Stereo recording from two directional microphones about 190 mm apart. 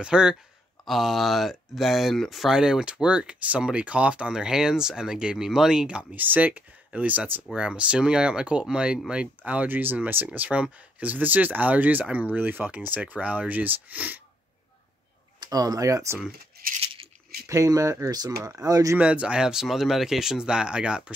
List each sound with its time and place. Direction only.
0.0 s speech: 5° right (ahead or behind)
15.4 s speech: 20° right (ahead or behind)
16.8 s a sound: 30° right (ahead or behind)
17.5 s speech: 15° right (ahead or behind)
18.9 s speech: 5° right (ahead or behind)